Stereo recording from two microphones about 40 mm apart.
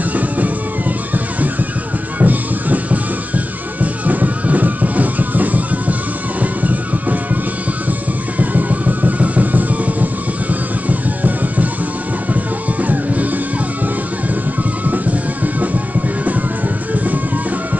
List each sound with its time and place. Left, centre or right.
2.1 s music: right
8.4 s music: right
12.8 s music: right
14.9 s music: right
16.9 s music: right